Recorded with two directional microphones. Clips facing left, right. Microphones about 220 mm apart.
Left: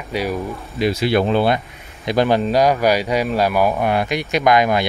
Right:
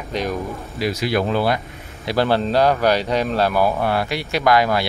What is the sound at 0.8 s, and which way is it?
Speech, 25° left (ahead or behind).